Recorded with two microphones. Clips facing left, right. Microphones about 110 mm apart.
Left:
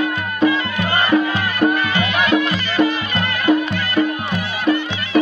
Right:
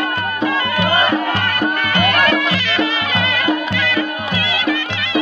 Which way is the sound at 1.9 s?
60° right (ahead or behind).